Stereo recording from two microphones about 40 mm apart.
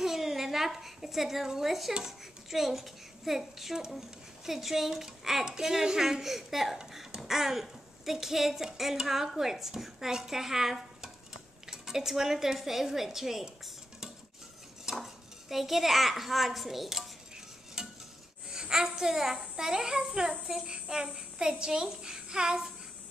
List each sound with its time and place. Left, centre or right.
0.0 s a woman's voice: centre
14.9 s cutlery: centre
15.5 s a child's voice: centre
17.8 s stir: centre
18.5 s a woman's voice: centre